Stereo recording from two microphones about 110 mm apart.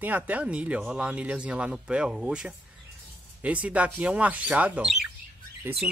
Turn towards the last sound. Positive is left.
turn(degrees=-20)  # may be behind; listen again after turning